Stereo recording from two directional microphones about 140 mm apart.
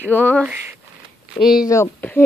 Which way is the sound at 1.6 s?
20° left (ahead or behind).